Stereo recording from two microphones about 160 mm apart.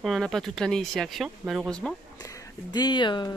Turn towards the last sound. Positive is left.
turn(degrees=30)  # may be behind; listen again after turning